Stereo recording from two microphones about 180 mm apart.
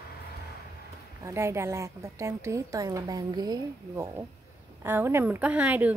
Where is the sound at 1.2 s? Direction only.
15° right (ahead or behind).